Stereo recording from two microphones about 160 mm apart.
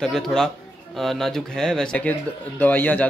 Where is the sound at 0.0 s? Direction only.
5° left (ahead or behind).